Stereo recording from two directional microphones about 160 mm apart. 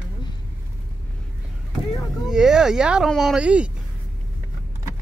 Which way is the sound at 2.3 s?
5° right (ahead or behind).